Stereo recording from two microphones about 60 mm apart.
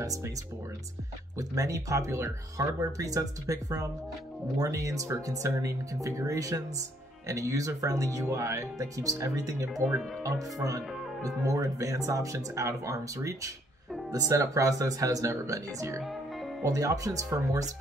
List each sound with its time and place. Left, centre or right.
0.0 s speech: right
1.5 s speech: right
7.2 s speech: right
10.2 s speech: right
11.2 s speech: right